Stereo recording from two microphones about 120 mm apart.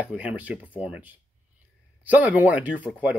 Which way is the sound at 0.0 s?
10° right (ahead or behind).